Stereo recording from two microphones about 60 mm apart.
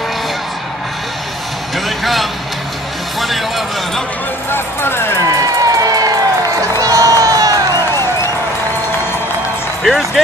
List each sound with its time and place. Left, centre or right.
1.9 s speech: centre
4.5 s speech: left
5.4 s crowd: right
9.8 s speech: centre